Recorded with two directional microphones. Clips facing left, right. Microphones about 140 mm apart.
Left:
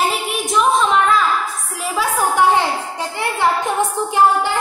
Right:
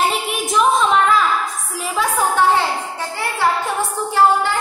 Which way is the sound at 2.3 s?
15° left (ahead or behind).